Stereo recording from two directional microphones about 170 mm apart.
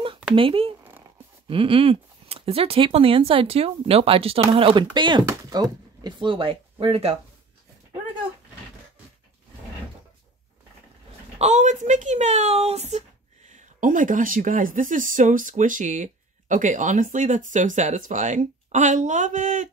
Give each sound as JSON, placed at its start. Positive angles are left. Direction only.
{"t": 0.4, "sound": "speech", "side_deg": -30}
{"t": 11.3, "sound": "a woman's voice", "side_deg": -45}